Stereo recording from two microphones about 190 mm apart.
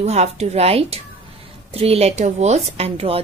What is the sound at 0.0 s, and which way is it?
A woman's voice, 35° right (ahead or behind).